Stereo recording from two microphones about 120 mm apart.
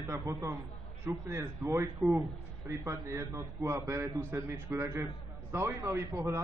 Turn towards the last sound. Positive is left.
turn(degrees=-20)  # may be behind; listen again after turning